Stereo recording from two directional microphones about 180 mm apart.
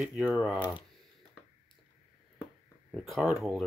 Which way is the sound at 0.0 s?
Centre (ahead or behind).